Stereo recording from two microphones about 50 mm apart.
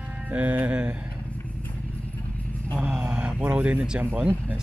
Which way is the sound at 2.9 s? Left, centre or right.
Right.